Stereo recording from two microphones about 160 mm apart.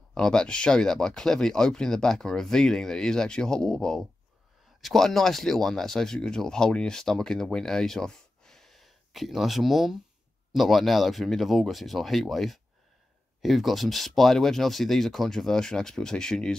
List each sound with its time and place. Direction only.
0.1 s speech: 5° left (ahead or behind)